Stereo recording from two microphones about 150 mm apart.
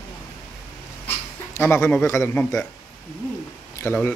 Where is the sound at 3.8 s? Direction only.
15° left (ahead or behind).